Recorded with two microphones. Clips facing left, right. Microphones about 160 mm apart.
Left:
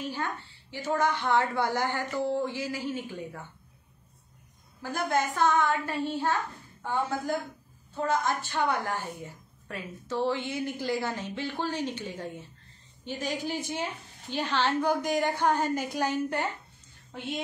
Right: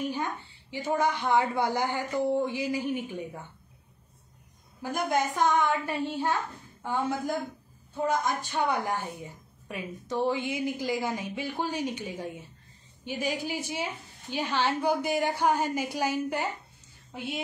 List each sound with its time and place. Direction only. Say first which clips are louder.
0.0 s a woman's voice: right 2 dB; 15° right (ahead or behind)
4.8 s a woman's voice: right 1 dB; 15° right (ahead or behind)